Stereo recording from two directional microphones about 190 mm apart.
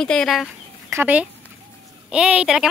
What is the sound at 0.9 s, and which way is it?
A woman's voice, 10° right (ahead or behind).